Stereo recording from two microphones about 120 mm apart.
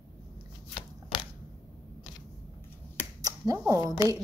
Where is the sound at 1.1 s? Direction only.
40° left (ahead or behind).